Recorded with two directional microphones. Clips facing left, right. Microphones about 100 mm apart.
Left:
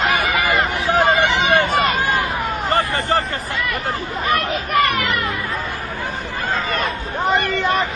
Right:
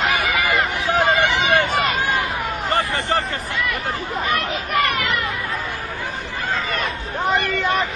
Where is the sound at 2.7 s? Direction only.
40° left (ahead or behind).